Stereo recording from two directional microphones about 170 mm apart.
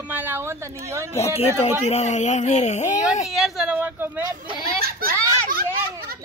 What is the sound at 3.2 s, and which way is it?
Speech, centre (ahead or behind).